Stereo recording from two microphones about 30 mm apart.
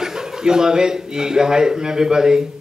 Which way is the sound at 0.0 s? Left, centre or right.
Right.